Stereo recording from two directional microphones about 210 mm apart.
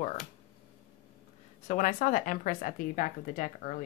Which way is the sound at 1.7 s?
35° left (ahead or behind).